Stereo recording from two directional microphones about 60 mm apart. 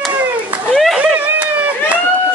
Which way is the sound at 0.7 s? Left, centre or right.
Centre.